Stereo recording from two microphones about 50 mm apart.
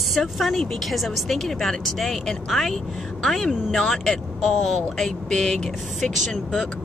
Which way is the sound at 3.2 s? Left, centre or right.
Centre.